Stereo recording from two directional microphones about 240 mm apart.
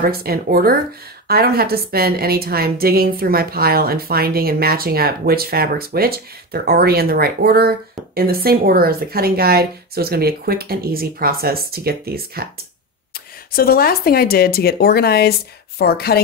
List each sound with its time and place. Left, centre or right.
0.0 s a woman's voice: right
13.5 s speech: left